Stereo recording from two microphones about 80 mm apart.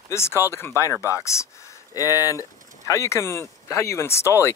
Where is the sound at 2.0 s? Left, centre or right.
Left.